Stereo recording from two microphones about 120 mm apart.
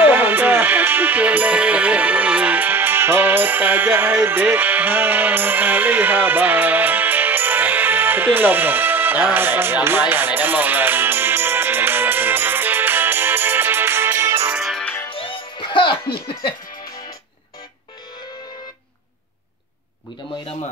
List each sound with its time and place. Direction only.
0.0 s music: 15° right (ahead or behind)
14.5 s music: centre (ahead or behind)
15.0 s music: 45° left (ahead or behind)